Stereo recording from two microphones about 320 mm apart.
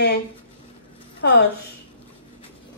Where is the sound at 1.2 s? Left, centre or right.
Left.